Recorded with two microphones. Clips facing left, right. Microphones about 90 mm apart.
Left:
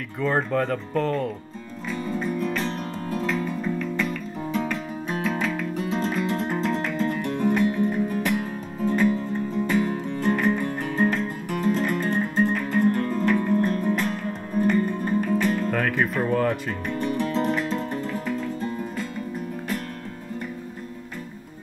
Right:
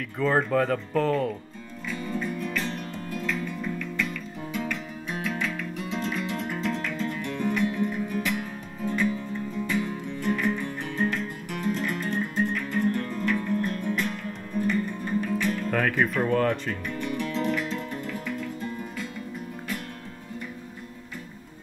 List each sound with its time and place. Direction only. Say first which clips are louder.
0.2 s speech: even; centre (ahead or behind)
1.9 s music: left 3 dB; 35° left (ahead or behind)
15.7 s music: left 1 dB; centre (ahead or behind)
16.8 s music: left 5 dB; 40° left (ahead or behind)